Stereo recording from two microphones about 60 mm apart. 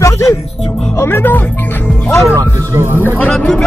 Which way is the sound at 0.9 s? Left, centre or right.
Left.